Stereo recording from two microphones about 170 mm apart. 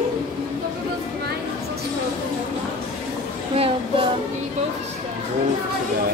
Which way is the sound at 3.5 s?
35° right (ahead or behind).